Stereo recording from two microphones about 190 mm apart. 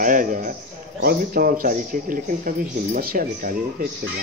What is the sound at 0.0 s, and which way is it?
A man's voice, 45° right (ahead or behind).